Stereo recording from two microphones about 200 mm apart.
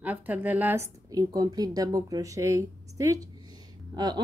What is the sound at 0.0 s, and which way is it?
A woman's voice, 10° right (ahead or behind).